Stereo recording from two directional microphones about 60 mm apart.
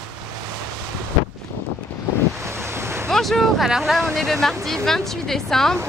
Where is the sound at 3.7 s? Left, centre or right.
Centre.